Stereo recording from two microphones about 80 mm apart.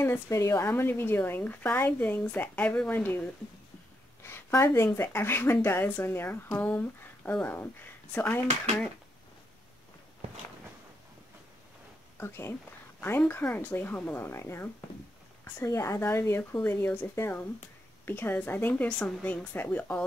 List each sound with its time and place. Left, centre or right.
0.0 s speech: left
0.7 s a woman's voice: left
4.2 s a sound: left
4.7 s a woman's voice: left
12.2 s a woman's voice: left